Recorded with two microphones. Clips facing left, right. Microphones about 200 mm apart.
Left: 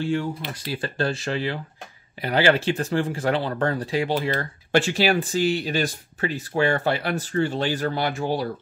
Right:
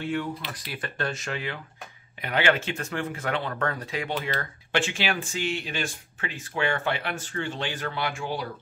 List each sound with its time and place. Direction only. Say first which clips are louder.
0.0 s speech: left 4 dB; 30° left (ahead or behind)